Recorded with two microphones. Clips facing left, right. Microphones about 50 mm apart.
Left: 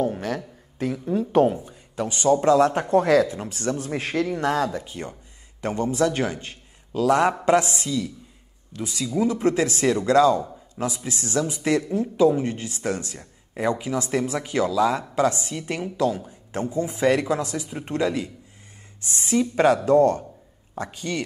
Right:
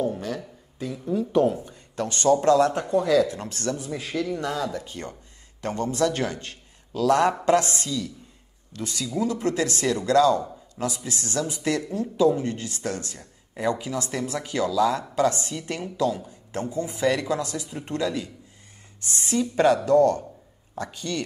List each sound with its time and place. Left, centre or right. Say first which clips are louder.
0.0 s speech: left 2 dB; left
1.4 s speech: left 3 dB; left
1.7 s a man's voice: left 1 dB; centre
2.9 s speech: left 4 dB; left
3.3 s speech: left 2 dB; centre
3.7 s speech: left 4 dB; left
4.8 s speech: left 2 dB; centre
19.5 s speech: left 1 dB; left